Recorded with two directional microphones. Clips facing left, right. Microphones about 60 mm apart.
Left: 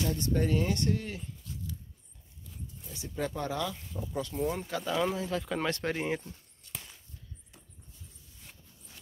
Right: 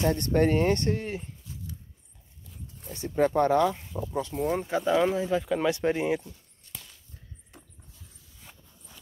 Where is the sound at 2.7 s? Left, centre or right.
Right.